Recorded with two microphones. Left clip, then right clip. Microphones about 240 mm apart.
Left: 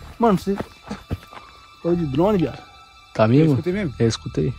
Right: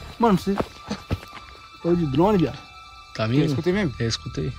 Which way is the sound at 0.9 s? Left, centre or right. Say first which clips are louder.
Right 2 dB; centre.